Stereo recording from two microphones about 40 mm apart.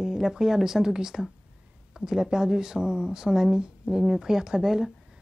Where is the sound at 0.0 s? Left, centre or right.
Centre.